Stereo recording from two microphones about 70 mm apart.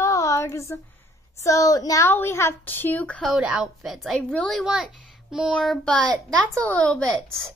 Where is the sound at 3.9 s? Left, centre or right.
Centre.